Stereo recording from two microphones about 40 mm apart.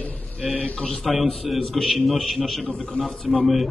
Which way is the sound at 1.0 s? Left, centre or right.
Centre.